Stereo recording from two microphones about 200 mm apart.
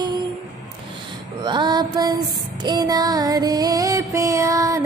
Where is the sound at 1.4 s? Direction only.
25° right (ahead or behind).